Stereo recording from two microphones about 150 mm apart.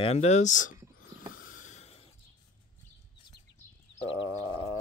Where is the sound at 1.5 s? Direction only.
55° left (ahead or behind).